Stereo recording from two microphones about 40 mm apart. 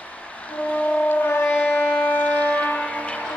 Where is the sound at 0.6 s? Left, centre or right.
Left.